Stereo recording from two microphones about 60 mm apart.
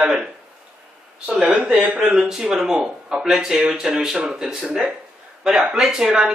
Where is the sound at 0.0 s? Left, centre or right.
Centre.